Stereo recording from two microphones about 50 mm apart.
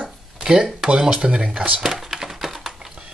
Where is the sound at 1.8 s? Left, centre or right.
Centre.